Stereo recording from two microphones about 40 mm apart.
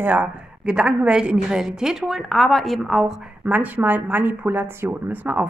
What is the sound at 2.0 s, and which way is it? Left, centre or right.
Speech, centre.